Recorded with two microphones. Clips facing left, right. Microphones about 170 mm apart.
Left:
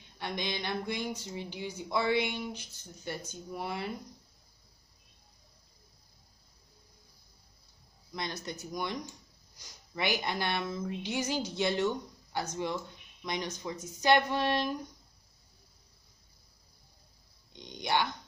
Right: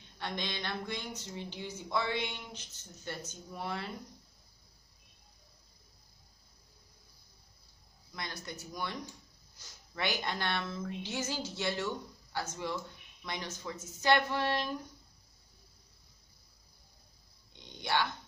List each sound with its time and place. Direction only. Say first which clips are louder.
0.2 s speech: left 3 dB; 10° left (ahead or behind)
8.2 s speech: left 5 dB; 20° left (ahead or behind)
17.5 s speech: left 3 dB; 15° left (ahead or behind)